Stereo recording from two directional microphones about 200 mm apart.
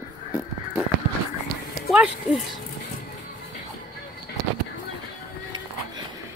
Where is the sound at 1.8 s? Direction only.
5° right (ahead or behind).